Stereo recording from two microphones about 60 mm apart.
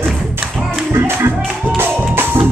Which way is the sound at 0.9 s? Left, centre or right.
Right.